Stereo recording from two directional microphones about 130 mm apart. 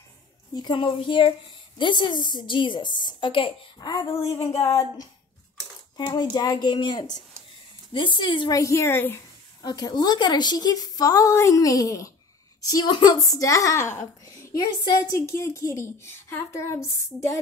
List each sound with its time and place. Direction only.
0.6 s a woman's voice: 35° left (ahead or behind)
3.8 s speech: 30° left (ahead or behind)
5.9 s a woman's voice: 35° left (ahead or behind)
8.5 s speech: 25° left (ahead or behind)
9.6 s speech: 30° left (ahead or behind)